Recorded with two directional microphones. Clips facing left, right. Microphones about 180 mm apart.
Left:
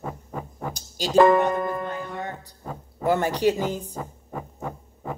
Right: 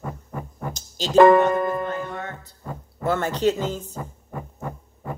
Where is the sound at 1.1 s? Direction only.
70° right (ahead or behind).